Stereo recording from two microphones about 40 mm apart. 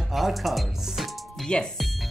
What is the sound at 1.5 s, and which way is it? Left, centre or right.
Speech, left.